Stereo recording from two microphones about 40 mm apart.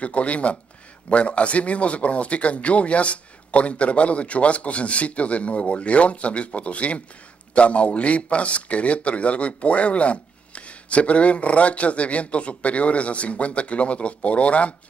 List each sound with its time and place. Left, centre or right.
0.0 s speech: left